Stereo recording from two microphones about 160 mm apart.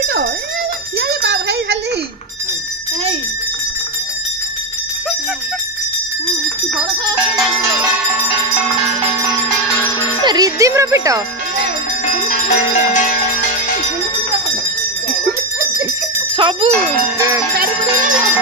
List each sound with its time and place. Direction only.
0.9 s a sound: 85° right
10.2 s speech: 25° right (ahead or behind)
12.3 s music: 50° left (ahead or behind)
16.3 s speech: 30° right (ahead or behind)